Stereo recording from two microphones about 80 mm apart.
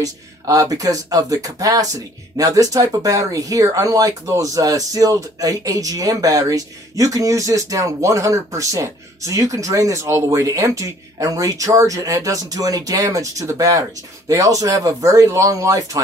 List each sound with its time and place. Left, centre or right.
0.0 s speech: right